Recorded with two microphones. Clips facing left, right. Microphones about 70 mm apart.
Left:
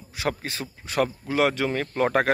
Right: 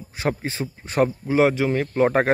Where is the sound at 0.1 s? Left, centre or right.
Right.